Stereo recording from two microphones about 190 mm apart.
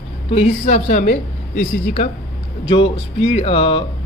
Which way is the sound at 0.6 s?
40° left (ahead or behind).